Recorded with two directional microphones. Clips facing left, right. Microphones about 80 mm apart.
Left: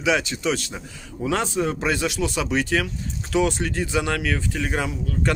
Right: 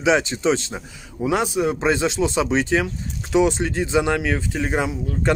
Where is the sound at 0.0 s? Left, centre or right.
Right.